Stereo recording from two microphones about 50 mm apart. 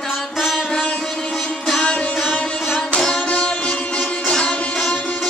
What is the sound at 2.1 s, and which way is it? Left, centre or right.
Music, centre.